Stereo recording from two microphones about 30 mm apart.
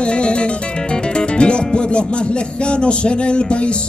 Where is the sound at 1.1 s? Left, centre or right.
Left.